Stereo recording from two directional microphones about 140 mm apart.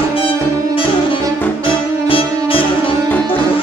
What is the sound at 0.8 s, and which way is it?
Music, 40° left (ahead or behind).